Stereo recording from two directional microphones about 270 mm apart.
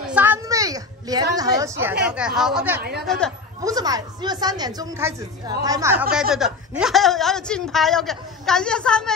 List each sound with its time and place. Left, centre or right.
0.1 s a sound: centre
1.6 s speech: centre
2.8 s speech: right
3.1 s speech: centre
3.6 s speech: centre